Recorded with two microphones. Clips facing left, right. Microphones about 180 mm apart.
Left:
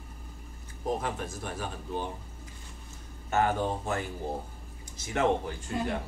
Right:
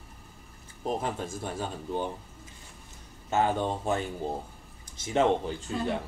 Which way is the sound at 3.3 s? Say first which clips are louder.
Right 1 dB; 20° right (ahead or behind).